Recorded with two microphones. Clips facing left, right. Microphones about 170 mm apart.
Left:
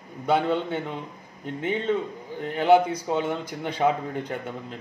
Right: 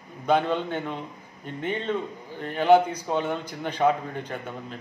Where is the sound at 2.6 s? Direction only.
10° left (ahead or behind).